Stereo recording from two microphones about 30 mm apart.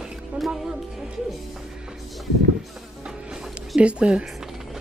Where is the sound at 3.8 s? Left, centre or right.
Right.